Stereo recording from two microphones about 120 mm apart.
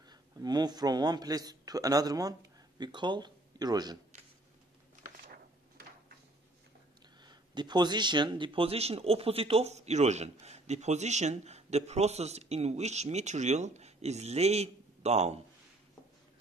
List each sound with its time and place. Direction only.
0.1 s a man's voice: 35° right (ahead or behind)
7.2 s speech: 35° right (ahead or behind); by 15.4 s 65° right (ahead or behind)